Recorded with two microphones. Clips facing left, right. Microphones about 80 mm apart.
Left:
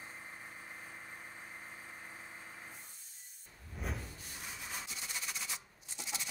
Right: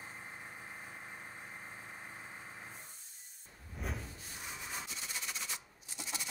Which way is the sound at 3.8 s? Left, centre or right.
Centre.